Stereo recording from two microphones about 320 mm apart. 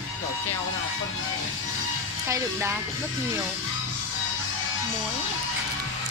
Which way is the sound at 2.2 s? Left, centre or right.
Centre.